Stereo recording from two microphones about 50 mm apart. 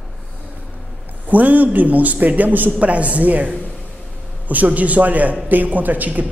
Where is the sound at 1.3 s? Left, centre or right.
Right.